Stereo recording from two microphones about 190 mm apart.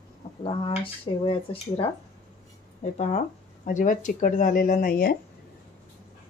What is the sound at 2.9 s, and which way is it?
Speech, 35° left (ahead or behind).